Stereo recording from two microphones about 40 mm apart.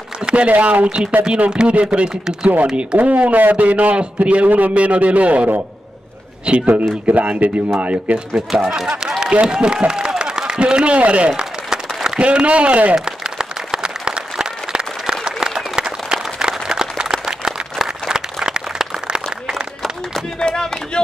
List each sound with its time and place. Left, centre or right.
0.3 s a man's voice: right
1.2 s speech: right
3.0 s a man's voice: right
6.7 s a man's voice: right
8.6 s a man's voice: right
11.7 s applause: centre
12.2 s a man's voice: right
12.9 s applause: centre
17.0 s a sound: centre
20.3 s a sound: left